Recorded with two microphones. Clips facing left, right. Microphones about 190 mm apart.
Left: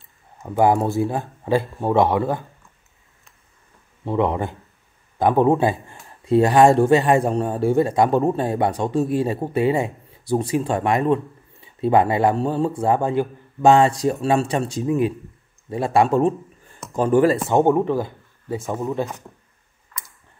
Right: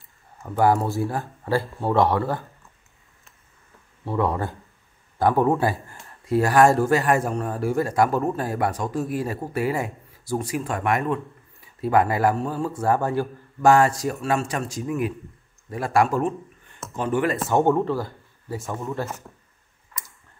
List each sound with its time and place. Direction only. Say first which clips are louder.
0.4 s speech: left 3 dB; 15° left (ahead or behind)
4.0 s speech: left 3 dB; 20° left (ahead or behind); by 17.4 s 35° left (ahead or behind)
17.5 s speech: left 3 dB; 15° left (ahead or behind)